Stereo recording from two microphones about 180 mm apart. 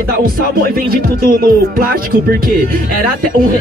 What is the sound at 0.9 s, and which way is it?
Speech, 55° right (ahead or behind).